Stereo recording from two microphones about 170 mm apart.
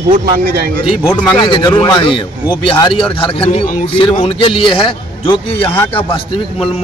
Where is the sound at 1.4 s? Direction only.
25° left (ahead or behind).